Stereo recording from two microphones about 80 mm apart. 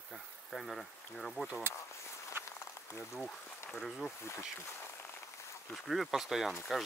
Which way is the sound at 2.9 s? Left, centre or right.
Left.